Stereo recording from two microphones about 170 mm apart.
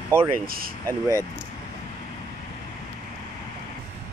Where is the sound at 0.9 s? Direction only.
15° right (ahead or behind).